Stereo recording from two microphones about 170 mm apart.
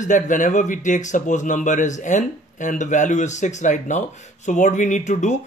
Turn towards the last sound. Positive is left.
turn(degrees=45)  # may be behind; listen again after turning